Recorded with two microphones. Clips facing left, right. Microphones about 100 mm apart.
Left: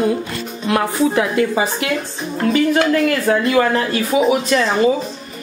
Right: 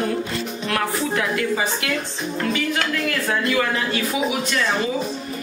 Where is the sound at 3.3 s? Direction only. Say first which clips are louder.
Left 5 dB; 40° left (ahead or behind).